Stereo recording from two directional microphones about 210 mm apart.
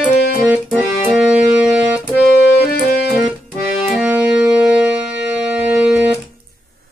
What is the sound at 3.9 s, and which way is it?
Music, 5° right (ahead or behind).